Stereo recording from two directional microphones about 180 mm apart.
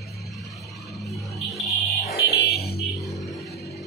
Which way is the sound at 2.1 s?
60° left (ahead or behind).